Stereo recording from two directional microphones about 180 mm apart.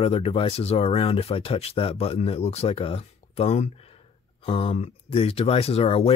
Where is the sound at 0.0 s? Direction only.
35° left (ahead or behind).